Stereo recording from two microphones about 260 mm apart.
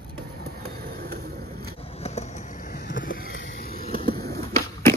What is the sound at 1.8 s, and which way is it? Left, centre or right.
Skateboard, left.